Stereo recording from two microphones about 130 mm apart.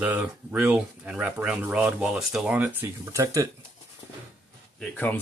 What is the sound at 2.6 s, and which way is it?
Speech, 15° right (ahead or behind).